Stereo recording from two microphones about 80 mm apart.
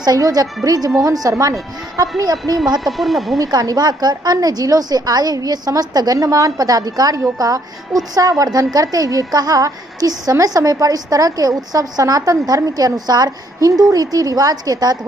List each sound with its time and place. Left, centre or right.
0.0 s a woman's voice: right
2.8 s speech: centre
3.3 s a woman's voice: right